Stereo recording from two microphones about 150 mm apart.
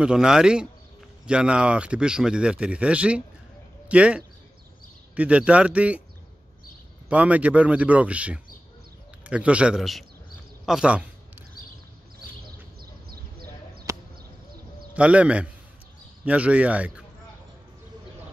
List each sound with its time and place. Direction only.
0.0 s a man's voice: 5° right (ahead or behind)
7.1 s speech: 10° right (ahead or behind)
13.1 s a sound: 90° right
15.0 s speech: 10° right (ahead or behind)